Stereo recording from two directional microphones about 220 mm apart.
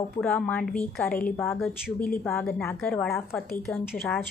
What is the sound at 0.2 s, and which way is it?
A woman's voice, 5° left (ahead or behind).